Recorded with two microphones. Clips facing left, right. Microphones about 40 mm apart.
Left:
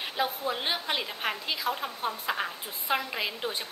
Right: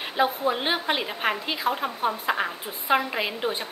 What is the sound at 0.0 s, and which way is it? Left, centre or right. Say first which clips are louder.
A woman's voice: right 6 dB; right.